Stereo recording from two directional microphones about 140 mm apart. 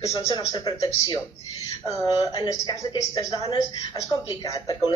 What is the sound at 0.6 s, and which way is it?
Speech, 30° left (ahead or behind).